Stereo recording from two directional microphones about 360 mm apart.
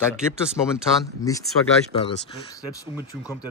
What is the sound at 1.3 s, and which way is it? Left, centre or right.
Speech, centre.